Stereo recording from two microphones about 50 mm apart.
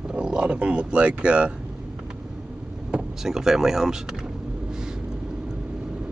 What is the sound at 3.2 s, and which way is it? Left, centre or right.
Speech, centre.